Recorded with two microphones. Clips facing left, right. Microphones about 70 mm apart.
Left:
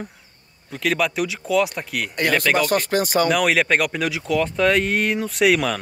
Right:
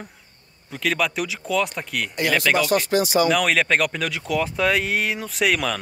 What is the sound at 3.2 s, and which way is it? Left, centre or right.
Speech, centre.